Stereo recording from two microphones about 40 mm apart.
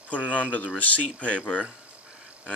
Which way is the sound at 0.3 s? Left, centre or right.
Left.